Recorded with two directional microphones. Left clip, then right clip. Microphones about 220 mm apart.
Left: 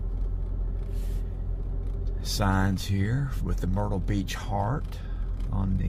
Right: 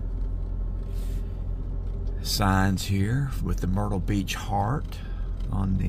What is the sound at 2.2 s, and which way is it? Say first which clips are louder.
Speech: right 3 dB; 10° right (ahead or behind).